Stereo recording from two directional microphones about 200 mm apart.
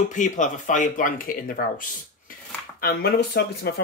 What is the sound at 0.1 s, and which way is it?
Speech, 40° left (ahead or behind).